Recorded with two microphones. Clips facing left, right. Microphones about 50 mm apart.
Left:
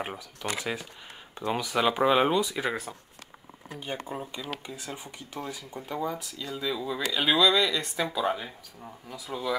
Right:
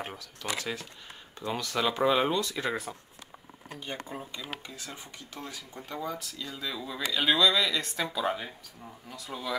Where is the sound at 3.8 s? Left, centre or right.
Centre.